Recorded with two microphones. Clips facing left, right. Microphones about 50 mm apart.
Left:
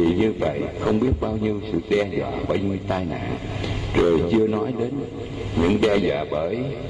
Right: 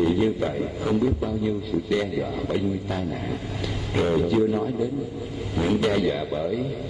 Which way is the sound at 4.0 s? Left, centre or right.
Left.